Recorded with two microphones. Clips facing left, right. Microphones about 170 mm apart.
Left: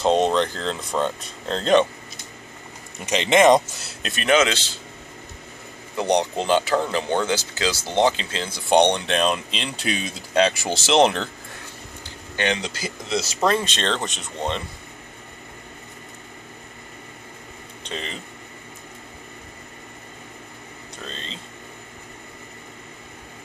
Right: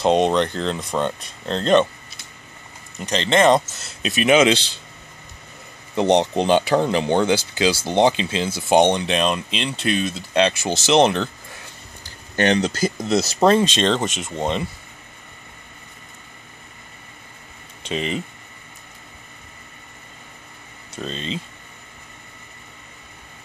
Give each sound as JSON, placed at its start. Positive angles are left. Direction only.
{"t": 0.0, "sound": "speech", "side_deg": -5}
{"t": 3.0, "sound": "speech", "side_deg": 10}
{"t": 4.0, "sound": "speech", "side_deg": -5}
{"t": 5.9, "sound": "speech", "side_deg": -20}
{"t": 12.4, "sound": "speech", "side_deg": -45}
{"t": 13.7, "sound": "speech", "side_deg": -15}
{"t": 14.0, "sound": "speech", "side_deg": -90}
{"t": 17.8, "sound": "speech", "side_deg": -15}
{"t": 21.0, "sound": "speech", "side_deg": -15}